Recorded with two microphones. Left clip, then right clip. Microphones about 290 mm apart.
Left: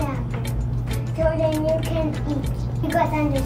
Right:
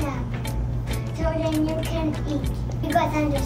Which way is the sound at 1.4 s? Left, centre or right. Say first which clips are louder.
Left 3 dB; centre.